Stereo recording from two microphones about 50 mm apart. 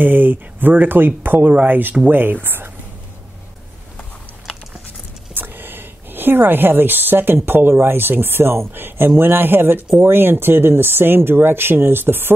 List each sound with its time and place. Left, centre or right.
0.0 s speech: right
2.4 s a sound: right
5.3 s speech: right